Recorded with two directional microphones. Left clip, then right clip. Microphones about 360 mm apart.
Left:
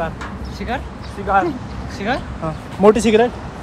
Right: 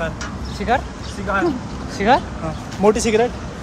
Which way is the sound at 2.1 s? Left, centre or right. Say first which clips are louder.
Right 7 dB; right.